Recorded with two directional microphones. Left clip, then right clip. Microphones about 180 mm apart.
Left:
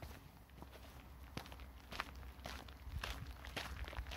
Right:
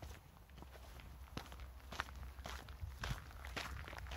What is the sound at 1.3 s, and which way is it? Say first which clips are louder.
Walk: even; 15° right (ahead or behind).